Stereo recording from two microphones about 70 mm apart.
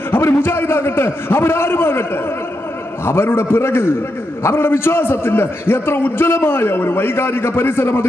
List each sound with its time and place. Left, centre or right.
0.1 s a man's voice: left
3.1 s a man's voice: left